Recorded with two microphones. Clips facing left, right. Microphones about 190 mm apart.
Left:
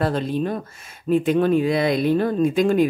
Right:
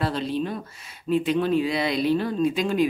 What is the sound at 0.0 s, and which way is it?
Speech, 50° left (ahead or behind).